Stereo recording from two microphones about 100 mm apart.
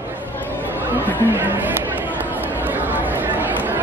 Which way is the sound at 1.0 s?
20° right (ahead or behind).